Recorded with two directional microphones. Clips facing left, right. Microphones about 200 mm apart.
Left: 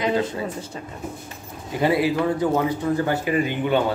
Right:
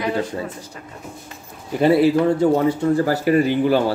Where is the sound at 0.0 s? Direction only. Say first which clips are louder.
Even; 20° left (ahead or behind).